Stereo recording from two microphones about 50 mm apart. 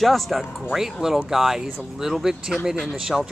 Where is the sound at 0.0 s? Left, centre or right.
Centre.